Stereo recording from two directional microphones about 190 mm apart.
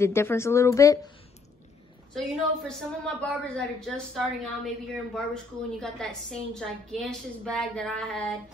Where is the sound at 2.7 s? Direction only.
5° left (ahead or behind).